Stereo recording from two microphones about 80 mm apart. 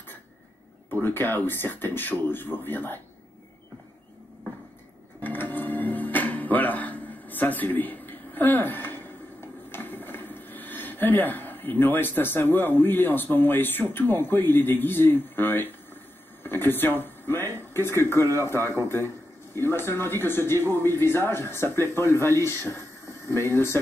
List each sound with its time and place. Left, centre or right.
0.9 s speech: left
5.2 s music: left
9.7 s speech: left